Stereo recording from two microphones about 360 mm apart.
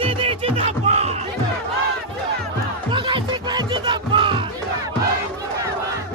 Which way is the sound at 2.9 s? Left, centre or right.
Centre.